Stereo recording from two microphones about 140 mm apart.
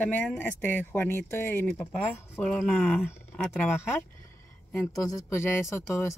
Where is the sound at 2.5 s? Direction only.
Centre (ahead or behind).